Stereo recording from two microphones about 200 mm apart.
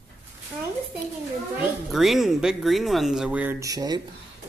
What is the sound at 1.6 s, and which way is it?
Speech, centre (ahead or behind).